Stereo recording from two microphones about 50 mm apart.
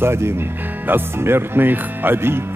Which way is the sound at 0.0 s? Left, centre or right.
Right.